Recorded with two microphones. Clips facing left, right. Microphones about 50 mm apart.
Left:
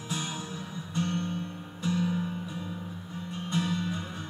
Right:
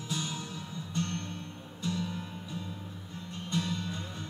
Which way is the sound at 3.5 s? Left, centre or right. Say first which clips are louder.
Left 3 dB; centre.